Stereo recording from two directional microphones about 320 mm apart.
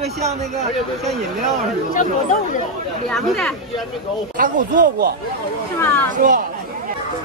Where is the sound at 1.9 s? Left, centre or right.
Left.